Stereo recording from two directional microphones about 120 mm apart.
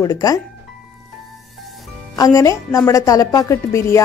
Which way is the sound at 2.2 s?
30° left (ahead or behind).